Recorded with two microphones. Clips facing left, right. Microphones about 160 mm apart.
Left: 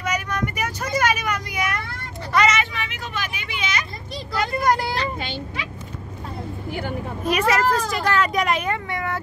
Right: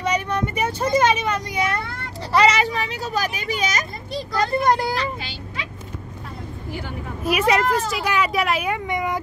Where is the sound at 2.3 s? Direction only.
30° right (ahead or behind).